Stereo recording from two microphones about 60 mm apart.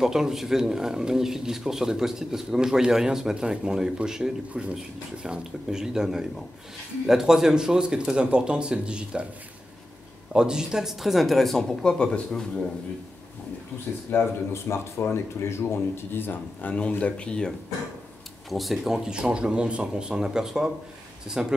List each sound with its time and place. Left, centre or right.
0.0 s speech: centre
10.3 s speech: centre
14.1 s speech: left
16.7 s speech: centre
18.5 s speech: centre
19.0 s speech: centre